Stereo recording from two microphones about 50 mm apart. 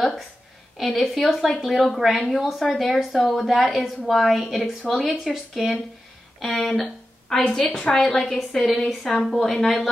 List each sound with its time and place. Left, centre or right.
0.7 s a woman's voice: centre